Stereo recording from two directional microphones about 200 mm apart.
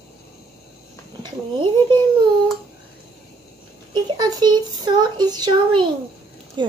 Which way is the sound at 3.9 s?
20° right (ahead or behind).